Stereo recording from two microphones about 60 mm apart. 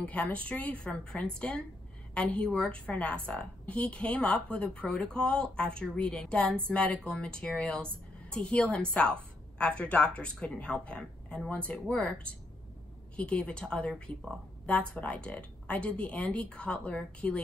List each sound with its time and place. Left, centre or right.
0.0 s speech: left